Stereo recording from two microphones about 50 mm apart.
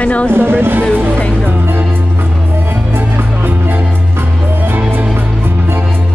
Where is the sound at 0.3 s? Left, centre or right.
Right.